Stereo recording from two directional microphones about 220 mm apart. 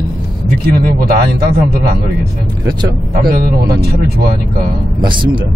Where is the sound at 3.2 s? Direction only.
40° right (ahead or behind).